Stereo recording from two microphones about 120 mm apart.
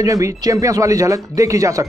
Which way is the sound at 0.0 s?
25° right (ahead or behind).